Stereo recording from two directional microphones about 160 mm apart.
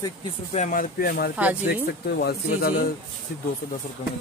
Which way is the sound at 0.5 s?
55° left (ahead or behind).